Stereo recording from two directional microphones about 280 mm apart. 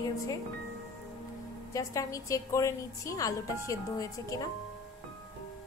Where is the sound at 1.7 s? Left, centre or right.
Centre.